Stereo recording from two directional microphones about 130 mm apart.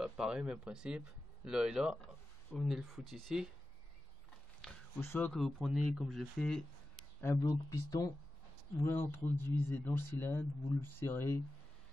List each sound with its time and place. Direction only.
0.0 s speech: 5° right (ahead or behind)
4.6 s a sound: 5° left (ahead or behind)
5.0 s speech: 15° left (ahead or behind)
5.3 s speech: centre (ahead or behind)
7.4 s speech: 25° left (ahead or behind)